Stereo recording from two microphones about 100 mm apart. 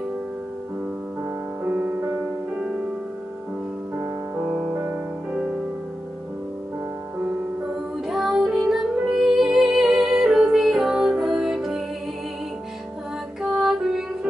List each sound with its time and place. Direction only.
1.6 s music: 20° right (ahead or behind)
3.9 s music: 15° right (ahead or behind)
8.1 s music: 5° right (ahead or behind)
13.4 s music: 5° right (ahead or behind)